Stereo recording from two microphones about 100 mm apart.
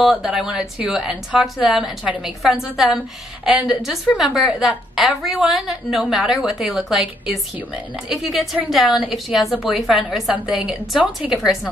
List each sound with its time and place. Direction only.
0.0 s a woman's voice: centre (ahead or behind)
10.3 s a woman's voice: 15° right (ahead or behind)
10.9 s a woman's voice: 5° right (ahead or behind)